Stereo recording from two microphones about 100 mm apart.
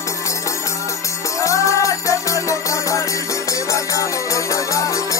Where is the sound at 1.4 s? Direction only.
30° left (ahead or behind).